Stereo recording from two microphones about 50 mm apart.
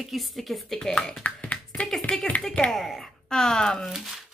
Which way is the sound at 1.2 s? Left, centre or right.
Left.